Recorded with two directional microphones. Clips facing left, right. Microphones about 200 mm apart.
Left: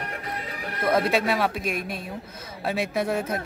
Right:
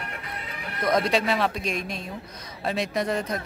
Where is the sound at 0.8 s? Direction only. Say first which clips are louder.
Left 1 dB; 5° left (ahead or behind).